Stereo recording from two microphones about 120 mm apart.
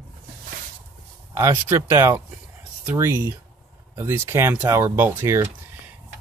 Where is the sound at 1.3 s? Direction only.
25° right (ahead or behind).